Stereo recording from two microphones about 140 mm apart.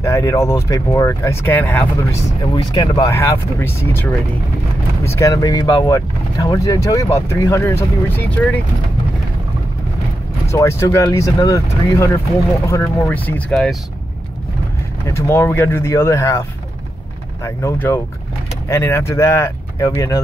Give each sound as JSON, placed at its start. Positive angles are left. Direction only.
{"t": 0.0, "sound": "speech", "side_deg": 20}
{"t": 2.5, "sound": "speech", "side_deg": 30}
{"t": 3.1, "sound": "speech", "side_deg": 20}
{"t": 10.5, "sound": "speech", "side_deg": 20}
{"t": 13.1, "sound": "speech", "side_deg": 10}
{"t": 15.1, "sound": "speech", "side_deg": 20}